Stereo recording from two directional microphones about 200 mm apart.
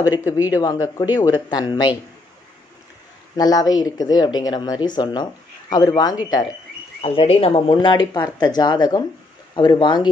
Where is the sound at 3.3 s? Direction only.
20° left (ahead or behind).